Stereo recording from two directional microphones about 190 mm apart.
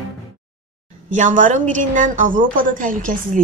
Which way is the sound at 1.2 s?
40° right (ahead or behind).